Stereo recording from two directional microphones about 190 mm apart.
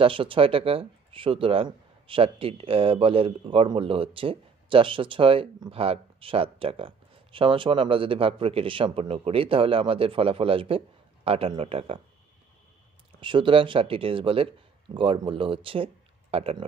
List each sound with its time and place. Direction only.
0.0 s speech: 30° right (ahead or behind)
13.2 s speech: 25° right (ahead or behind)